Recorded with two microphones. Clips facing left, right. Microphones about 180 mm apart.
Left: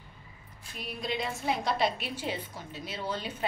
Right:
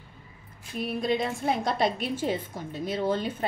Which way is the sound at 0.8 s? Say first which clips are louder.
Right 7 dB; 50° right (ahead or behind).